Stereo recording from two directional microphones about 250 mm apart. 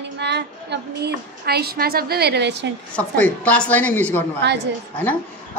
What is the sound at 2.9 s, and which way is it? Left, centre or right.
A woman's voice, centre.